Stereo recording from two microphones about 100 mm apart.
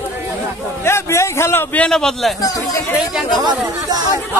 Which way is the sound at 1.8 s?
5° left (ahead or behind).